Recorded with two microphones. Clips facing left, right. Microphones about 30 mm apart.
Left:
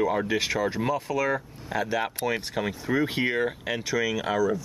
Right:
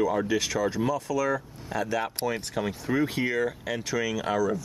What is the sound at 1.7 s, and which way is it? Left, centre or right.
Speech, centre.